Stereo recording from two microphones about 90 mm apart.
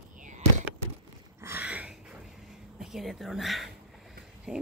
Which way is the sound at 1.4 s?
25° right (ahead or behind).